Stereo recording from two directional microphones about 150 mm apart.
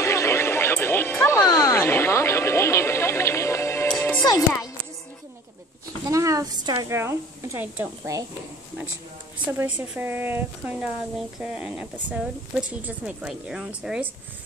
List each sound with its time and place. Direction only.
0.0 s music: 20° left (ahead or behind)
1.4 s a sound: 25° left (ahead or behind)
3.9 s music: 10° left (ahead or behind)
4.2 s music: 25° left (ahead or behind)
6.0 s a woman's voice: 20° right (ahead or behind)
9.5 s speech: 10° right (ahead or behind)